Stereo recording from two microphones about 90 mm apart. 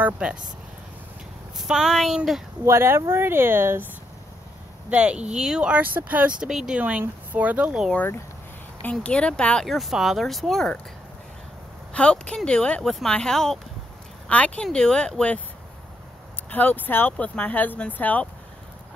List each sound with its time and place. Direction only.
0.0 s speech: 10° right (ahead or behind)
1.6 s speech: centre (ahead or behind)
2.6 s speech: 30° right (ahead or behind)
4.8 s speech: 15° right (ahead or behind)
6.8 s speech: 20° right (ahead or behind)
9.0 s speech: 10° left (ahead or behind)
9.7 s speech: centre (ahead or behind)
11.9 s speech: 10° left (ahead or behind)
16.4 s speech: 20° left (ahead or behind)